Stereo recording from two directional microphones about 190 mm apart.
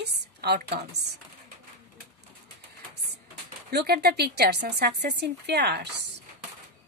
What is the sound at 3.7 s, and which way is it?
A woman's voice, 55° right (ahead or behind).